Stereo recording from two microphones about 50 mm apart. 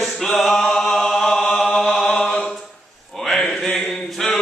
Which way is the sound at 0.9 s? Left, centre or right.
Centre.